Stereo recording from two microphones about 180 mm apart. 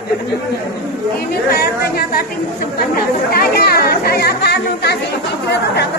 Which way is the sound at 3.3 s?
60° left (ahead or behind).